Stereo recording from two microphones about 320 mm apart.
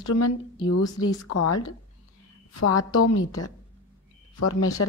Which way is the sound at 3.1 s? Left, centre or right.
Left.